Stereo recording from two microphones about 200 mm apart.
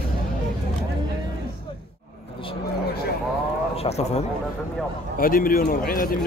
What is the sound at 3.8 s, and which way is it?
Speech, 35° left (ahead or behind).